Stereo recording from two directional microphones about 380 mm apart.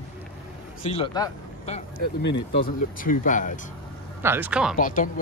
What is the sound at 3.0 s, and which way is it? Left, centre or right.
Speech, left.